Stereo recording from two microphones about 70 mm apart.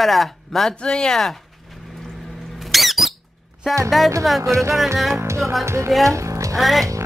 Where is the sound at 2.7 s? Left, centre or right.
Centre.